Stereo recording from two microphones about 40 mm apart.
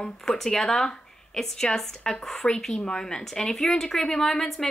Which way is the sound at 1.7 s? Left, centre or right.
Left.